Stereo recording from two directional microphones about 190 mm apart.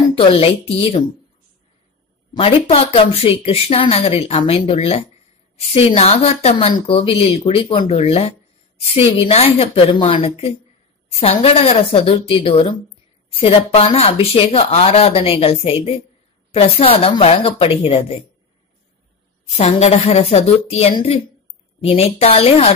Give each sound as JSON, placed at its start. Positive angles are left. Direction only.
{"t": 0.1, "sound": "a woman's voice", "side_deg": 30}
{"t": 2.3, "sound": "speech", "side_deg": 30}
{"t": 19.5, "sound": "speech", "side_deg": 35}